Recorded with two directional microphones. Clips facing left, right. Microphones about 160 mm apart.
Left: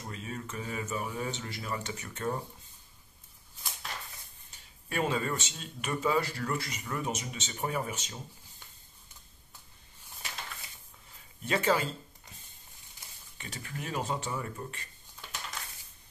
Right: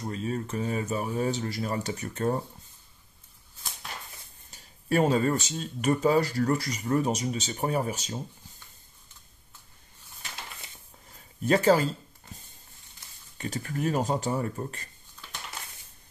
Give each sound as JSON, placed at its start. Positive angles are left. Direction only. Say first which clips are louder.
{"t": 0.0, "sound": "speech", "louder": "right 9 dB", "side_deg": -35}
{"t": 4.5, "sound": "speech", "louder": "right 14 dB", "side_deg": -40}
{"t": 11.1, "sound": "speech", "louder": "right 8 dB", "side_deg": -40}
{"t": 13.4, "sound": "speech", "louder": "right 11 dB", "side_deg": -40}